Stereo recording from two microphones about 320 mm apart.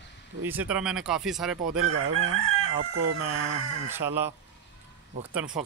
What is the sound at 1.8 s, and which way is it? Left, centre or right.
Chicken, right.